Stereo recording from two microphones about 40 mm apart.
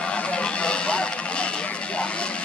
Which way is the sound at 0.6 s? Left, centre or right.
Left.